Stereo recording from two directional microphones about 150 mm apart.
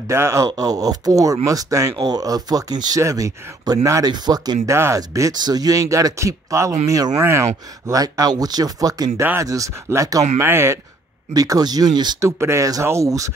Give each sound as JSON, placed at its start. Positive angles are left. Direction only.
{"t": 0.1, "sound": "speech", "side_deg": -20}
{"t": 12.3, "sound": "speech", "side_deg": -15}